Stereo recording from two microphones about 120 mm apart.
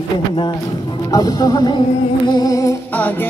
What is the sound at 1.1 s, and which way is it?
Music, 30° left (ahead or behind).